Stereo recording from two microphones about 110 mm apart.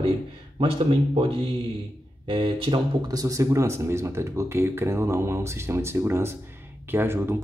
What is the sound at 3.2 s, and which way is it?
Speech, 30° right (ahead or behind).